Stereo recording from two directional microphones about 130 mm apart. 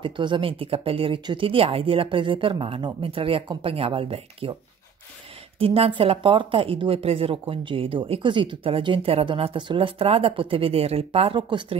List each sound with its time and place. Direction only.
0.0 s speech: 40° right (ahead or behind)
5.6 s speech: 45° right (ahead or behind)